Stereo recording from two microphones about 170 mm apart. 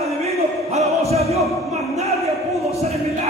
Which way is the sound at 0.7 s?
40° right (ahead or behind).